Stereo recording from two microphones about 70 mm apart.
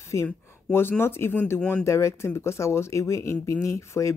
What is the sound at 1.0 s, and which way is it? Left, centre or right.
Speech, left.